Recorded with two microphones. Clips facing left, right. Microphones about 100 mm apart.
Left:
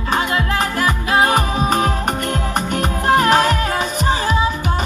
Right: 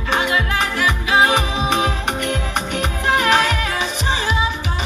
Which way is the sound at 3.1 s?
40° left (ahead or behind).